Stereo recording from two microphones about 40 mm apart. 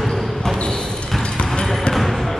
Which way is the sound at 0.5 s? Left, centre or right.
Left.